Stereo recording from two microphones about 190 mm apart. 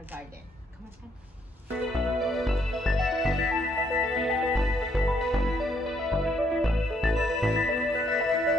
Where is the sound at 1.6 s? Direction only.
Centre (ahead or behind).